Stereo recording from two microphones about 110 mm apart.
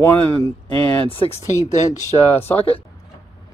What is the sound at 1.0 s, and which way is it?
Speech, 60° left (ahead or behind).